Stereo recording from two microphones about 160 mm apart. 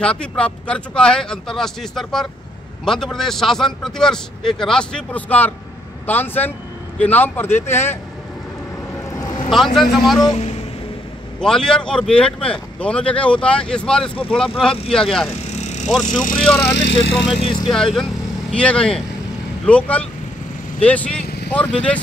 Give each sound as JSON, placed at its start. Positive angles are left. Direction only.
{"t": 0.0, "sound": "a man's voice", "side_deg": 5}
{"t": 9.1, "sound": "vehicle", "side_deg": 20}
{"t": 9.5, "sound": "a man's voice", "side_deg": 0}
{"t": 11.3, "sound": "a man's voice", "side_deg": 5}
{"t": 15.5, "sound": "vehicle", "side_deg": 45}
{"t": 16.0, "sound": "speech", "side_deg": 50}
{"t": 16.7, "sound": "speech", "side_deg": 90}
{"t": 17.4, "sound": "speech", "side_deg": 30}
{"t": 17.6, "sound": "a man's voice", "side_deg": 0}